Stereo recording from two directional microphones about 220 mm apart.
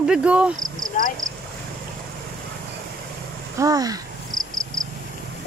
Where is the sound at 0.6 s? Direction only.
35° right (ahead or behind).